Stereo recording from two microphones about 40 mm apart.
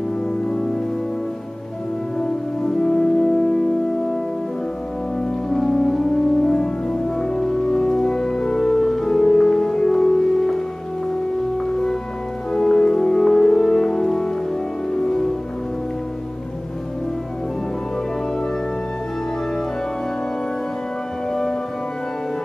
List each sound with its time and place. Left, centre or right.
0.5 s music: centre
2.1 s music: centre
5.2 s music: centre
21.3 s music: centre